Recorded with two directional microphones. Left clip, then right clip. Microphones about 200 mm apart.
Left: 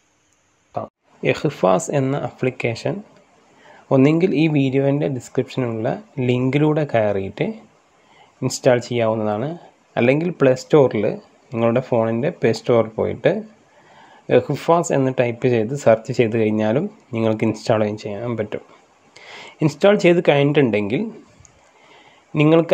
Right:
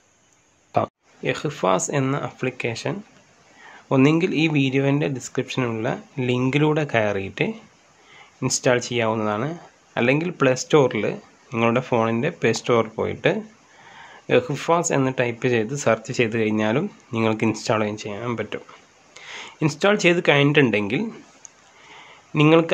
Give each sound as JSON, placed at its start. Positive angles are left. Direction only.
{"t": 0.7, "sound": "speech", "side_deg": -25}
{"t": 1.2, "sound": "speech", "side_deg": 20}
{"t": 4.2, "sound": "speech", "side_deg": 15}
{"t": 20.4, "sound": "a man's voice", "side_deg": 0}
{"t": 20.7, "sound": "speech", "side_deg": 10}
{"t": 22.3, "sound": "a man's voice", "side_deg": 0}